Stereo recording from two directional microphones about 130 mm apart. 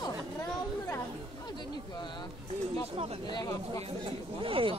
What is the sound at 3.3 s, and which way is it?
Speech, 30° left (ahead or behind).